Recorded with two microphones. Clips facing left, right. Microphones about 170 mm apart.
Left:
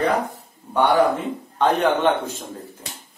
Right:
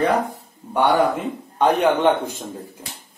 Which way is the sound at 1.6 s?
15° right (ahead or behind).